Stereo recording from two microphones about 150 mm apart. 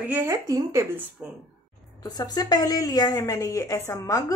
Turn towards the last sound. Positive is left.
turn(degrees=20)  # may be behind; listen again after turning